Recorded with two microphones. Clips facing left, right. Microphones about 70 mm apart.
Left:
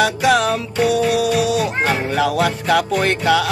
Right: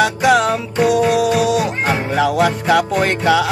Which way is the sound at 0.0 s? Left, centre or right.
Centre.